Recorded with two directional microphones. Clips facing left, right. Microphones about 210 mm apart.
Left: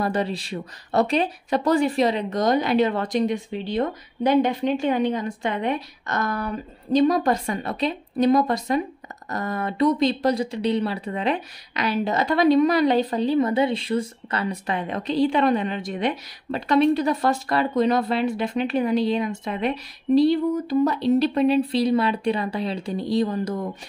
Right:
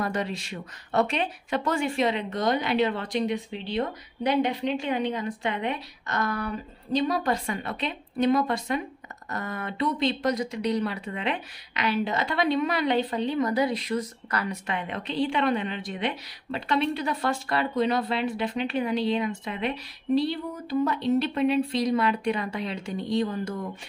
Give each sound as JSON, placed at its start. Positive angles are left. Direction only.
{"t": 0.0, "sound": "speech", "side_deg": 35}